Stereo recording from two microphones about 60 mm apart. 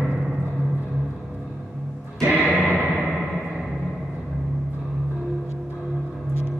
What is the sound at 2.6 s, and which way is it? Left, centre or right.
Music, centre.